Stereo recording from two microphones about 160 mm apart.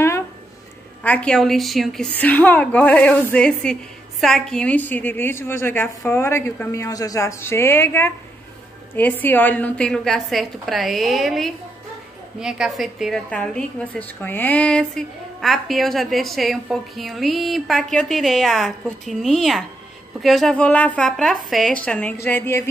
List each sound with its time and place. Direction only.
1.0 s a woman's voice: 5° left (ahead or behind)